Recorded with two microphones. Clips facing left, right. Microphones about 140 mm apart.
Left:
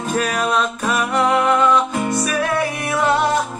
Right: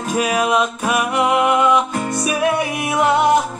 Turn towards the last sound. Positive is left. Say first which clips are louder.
# right 2 dB
turn(degrees=-15)  # may be behind; listen again after turning